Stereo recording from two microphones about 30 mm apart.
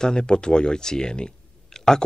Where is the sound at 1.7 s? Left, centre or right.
Centre.